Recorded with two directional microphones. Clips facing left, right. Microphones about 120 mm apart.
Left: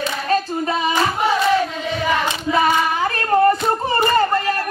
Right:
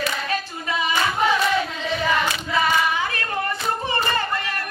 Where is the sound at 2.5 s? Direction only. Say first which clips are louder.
Left 4 dB; 40° left (ahead or behind).